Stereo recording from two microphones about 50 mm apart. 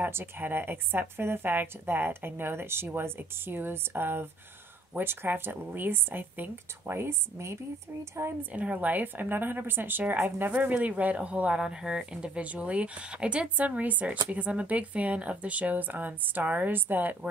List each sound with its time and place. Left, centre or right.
0.0 s speech: right
7.0 s speech: right
8.4 s speech: right
11.5 s speech: centre
12.4 s speech: right
13.7 s speech: right